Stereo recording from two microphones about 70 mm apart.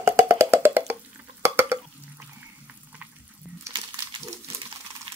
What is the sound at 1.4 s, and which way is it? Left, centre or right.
Drip, right.